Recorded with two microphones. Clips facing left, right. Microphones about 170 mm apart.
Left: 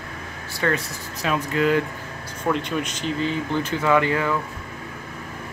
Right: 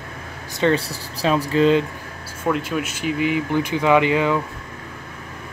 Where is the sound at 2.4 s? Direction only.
5° right (ahead or behind).